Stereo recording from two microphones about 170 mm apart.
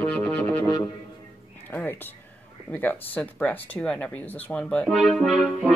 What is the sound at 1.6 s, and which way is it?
Speech, 10° left (ahead or behind).